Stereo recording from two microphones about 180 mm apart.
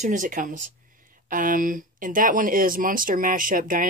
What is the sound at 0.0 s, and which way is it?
Speech, 45° right (ahead or behind).